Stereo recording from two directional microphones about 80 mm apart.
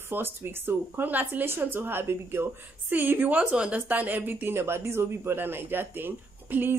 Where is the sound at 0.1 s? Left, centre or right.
Right.